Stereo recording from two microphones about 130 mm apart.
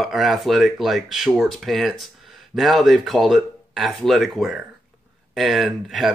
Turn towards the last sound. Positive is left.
turn(degrees=0)  # may be behind; listen again after turning